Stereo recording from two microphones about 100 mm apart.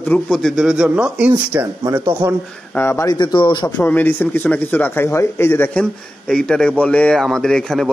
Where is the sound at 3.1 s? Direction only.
50° left (ahead or behind).